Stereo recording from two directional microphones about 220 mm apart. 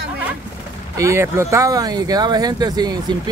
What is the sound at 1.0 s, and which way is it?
Speech, 10° right (ahead or behind).